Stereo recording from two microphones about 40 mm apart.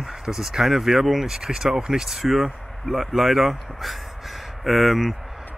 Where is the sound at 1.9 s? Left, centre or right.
Centre.